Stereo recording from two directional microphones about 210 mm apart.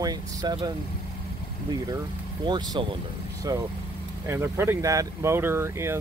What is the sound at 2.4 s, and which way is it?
Speech, 20° right (ahead or behind).